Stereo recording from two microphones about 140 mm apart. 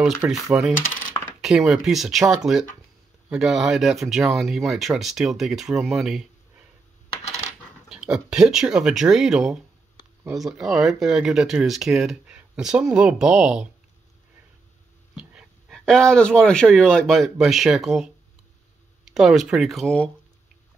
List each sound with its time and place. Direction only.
0.3 s speech: centre (ahead or behind)
7.9 s speech: 5° right (ahead or behind)
15.1 s dog: 5° right (ahead or behind)
15.8 s speech: 5° left (ahead or behind)